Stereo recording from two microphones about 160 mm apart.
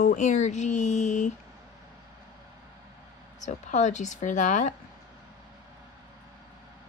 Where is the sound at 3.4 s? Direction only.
50° left (ahead or behind).